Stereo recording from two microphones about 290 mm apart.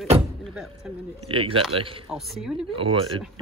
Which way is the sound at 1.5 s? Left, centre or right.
Centre.